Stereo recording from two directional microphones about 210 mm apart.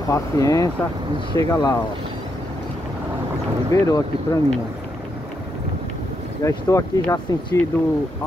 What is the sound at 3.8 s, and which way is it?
Speech, 15° left (ahead or behind).